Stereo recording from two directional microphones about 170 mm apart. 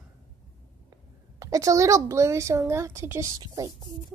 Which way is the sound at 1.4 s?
20° right (ahead or behind).